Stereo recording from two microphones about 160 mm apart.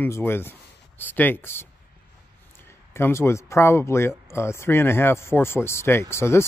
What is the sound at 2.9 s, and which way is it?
Speech, 15° left (ahead or behind).